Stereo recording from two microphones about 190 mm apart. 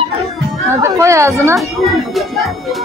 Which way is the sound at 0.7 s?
15° right (ahead or behind).